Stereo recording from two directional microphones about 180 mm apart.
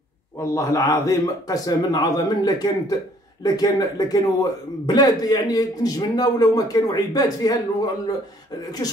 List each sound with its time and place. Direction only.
0.4 s a man's voice: 15° left (ahead or behind)